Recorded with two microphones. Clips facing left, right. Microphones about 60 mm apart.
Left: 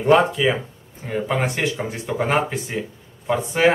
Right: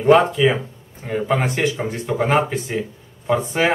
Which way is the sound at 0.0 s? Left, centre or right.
Centre.